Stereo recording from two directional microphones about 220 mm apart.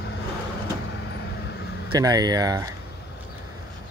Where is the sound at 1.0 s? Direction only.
50° left (ahead or behind).